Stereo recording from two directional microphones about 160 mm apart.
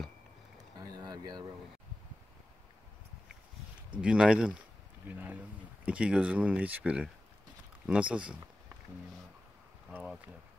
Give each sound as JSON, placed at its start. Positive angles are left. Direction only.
{"t": 0.7, "sound": "a sound", "side_deg": -25}
{"t": 4.0, "sound": "speech", "side_deg": -5}
{"t": 9.9, "sound": "speech", "side_deg": -10}